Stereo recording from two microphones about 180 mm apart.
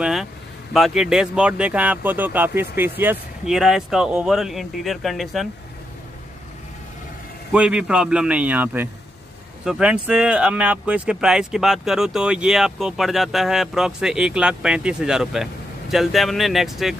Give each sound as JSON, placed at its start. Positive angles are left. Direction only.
{"t": 0.0, "sound": "vehicle", "side_deg": 0}
{"t": 0.7, "sound": "speech", "side_deg": 0}
{"t": 7.5, "sound": "a man's voice", "side_deg": -5}